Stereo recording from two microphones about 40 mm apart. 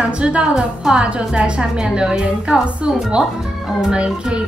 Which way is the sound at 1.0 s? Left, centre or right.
Right.